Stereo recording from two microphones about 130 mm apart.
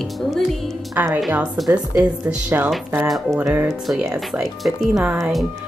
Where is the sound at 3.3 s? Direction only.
20° right (ahead or behind).